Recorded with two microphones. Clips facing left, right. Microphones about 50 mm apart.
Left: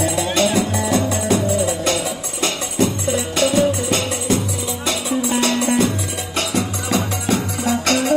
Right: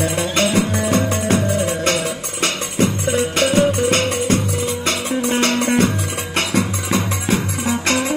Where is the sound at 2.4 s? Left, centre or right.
Right.